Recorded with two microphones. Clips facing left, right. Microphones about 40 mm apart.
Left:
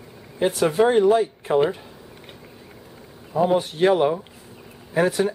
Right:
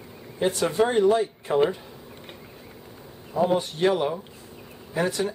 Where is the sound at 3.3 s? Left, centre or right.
Centre.